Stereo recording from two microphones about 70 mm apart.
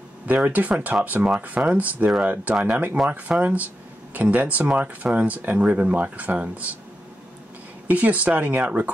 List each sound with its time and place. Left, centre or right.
0.3 s speech: right
7.9 s speech: right